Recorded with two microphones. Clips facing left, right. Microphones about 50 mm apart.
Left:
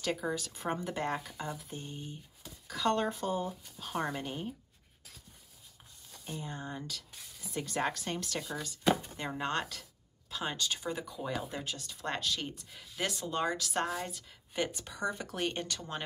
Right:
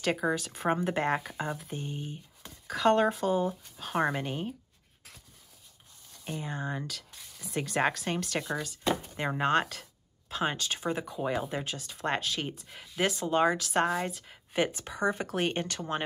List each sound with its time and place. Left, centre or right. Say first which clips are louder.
0.0 s speech: right 5 dB; right
1.7 s speech: right 5 dB; right
3.2 s speech: right 6 dB; right
6.2 s speech: right 5 dB; right